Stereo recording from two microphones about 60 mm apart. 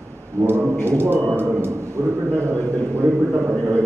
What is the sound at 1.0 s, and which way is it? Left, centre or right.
Speech, right.